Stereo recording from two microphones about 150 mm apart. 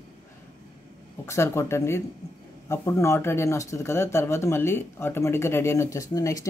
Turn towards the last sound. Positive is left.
turn(degrees=20)  # may be behind; listen again after turning